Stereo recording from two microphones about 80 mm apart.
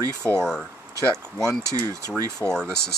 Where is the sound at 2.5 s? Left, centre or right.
Centre.